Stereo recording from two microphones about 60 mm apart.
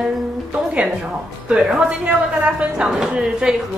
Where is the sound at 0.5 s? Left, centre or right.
Centre.